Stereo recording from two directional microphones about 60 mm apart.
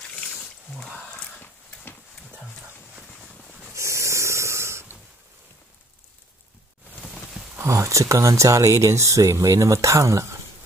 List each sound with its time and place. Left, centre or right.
0.1 s a sound: left
3.7 s snoring: right
7.6 s speech: right